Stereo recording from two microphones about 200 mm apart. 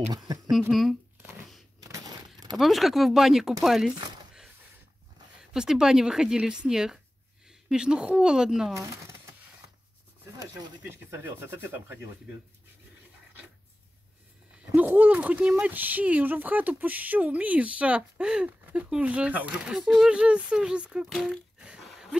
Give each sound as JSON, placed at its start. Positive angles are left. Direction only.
{"t": 0.5, "sound": "shuffling cards", "side_deg": 0}
{"t": 1.8, "sound": "a sound", "side_deg": -20}
{"t": 2.5, "sound": "speech", "side_deg": 0}
{"t": 5.4, "sound": "a woman's voice", "side_deg": 0}
{"t": 8.7, "sound": "a sound", "side_deg": -15}
{"t": 10.4, "sound": "speech", "side_deg": -15}
{"t": 14.7, "sound": "speech", "side_deg": -10}